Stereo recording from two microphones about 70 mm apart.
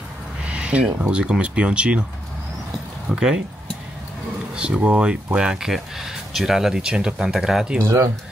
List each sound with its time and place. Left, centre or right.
0.5 s a sound: centre
1.0 s speech: centre
3.1 s speech: centre
4.6 s speech: centre